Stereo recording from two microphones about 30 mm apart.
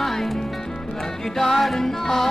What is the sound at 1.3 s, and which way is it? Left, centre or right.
Speech, centre.